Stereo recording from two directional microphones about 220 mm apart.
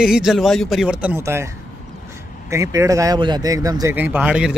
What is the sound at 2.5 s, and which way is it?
Speech, 15° right (ahead or behind).